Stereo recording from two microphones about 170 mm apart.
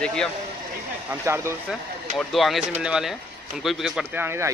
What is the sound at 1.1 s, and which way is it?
Speech, 15° right (ahead or behind).